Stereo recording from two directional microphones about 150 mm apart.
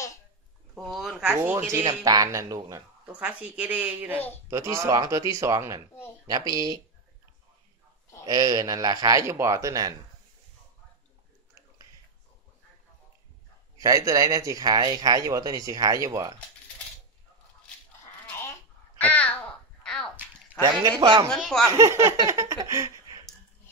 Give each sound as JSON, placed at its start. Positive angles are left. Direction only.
{"t": 0.7, "sound": "speech", "side_deg": 0}
{"t": 2.0, "sound": "speech", "side_deg": -25}
{"t": 3.1, "sound": "speech", "side_deg": -10}
{"t": 8.3, "sound": "speech", "side_deg": -25}
{"t": 13.7, "sound": "speech", "side_deg": -20}
{"t": 18.9, "sound": "babbling", "side_deg": 10}
{"t": 19.8, "sound": "bathtub", "side_deg": 5}
{"t": 20.6, "sound": "speech", "side_deg": -30}
{"t": 21.3, "sound": "speech", "side_deg": 5}
{"t": 21.6, "sound": "speech", "side_deg": -20}